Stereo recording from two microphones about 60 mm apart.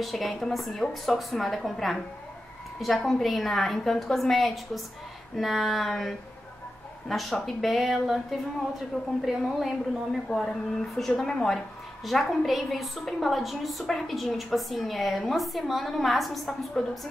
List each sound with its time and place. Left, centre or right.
0.0 s a woman's voice: centre